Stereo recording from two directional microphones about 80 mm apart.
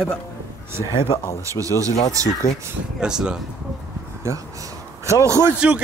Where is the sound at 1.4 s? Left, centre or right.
Right.